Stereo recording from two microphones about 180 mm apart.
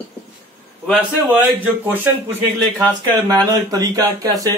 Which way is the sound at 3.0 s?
20° right (ahead or behind).